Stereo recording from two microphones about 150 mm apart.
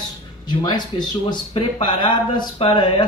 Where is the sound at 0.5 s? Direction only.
30° left (ahead or behind).